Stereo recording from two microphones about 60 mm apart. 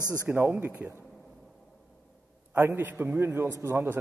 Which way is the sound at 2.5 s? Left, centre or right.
Right.